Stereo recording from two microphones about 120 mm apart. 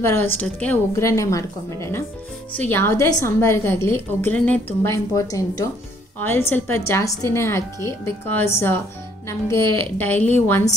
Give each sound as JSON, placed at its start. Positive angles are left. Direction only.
{"t": 0.0, "sound": "a woman's voice", "side_deg": 20}
{"t": 0.9, "sound": "a woman's voice", "side_deg": 25}
{"t": 4.8, "sound": "a woman's voice", "side_deg": 25}